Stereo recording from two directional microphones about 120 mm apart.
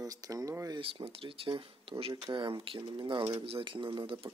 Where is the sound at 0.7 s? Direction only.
45° right (ahead or behind).